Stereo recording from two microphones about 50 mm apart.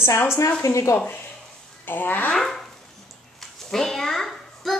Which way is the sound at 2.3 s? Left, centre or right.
Centre.